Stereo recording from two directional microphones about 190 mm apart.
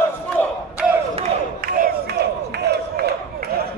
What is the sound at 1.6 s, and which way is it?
Crowd, 50° right (ahead or behind).